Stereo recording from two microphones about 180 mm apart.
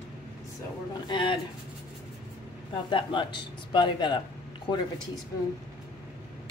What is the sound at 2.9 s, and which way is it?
Speech, 25° left (ahead or behind).